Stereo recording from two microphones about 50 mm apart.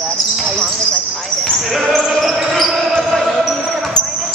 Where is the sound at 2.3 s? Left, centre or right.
Centre.